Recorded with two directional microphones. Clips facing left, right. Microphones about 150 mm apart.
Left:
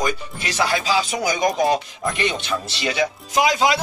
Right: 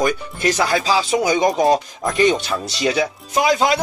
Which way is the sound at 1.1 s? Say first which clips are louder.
Right 4 dB; 25° right (ahead or behind).